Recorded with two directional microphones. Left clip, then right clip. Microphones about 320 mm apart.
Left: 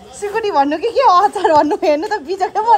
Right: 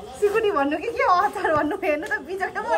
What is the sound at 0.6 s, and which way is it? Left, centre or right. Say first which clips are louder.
Speech: left 7 dB; right.